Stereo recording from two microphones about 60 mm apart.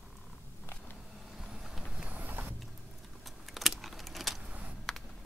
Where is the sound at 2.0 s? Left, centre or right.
Right.